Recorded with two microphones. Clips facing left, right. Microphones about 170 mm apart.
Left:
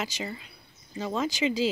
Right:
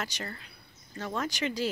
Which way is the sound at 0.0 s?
10° left (ahead or behind).